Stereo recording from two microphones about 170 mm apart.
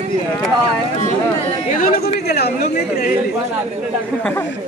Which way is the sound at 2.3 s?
70° left (ahead or behind).